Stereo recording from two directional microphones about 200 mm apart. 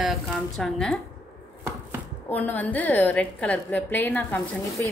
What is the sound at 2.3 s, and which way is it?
A woman's voice, 10° left (ahead or behind).